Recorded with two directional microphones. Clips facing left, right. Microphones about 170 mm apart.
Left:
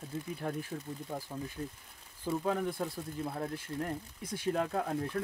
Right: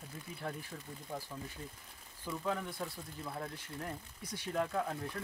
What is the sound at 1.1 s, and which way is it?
Speech, 45° left (ahead or behind).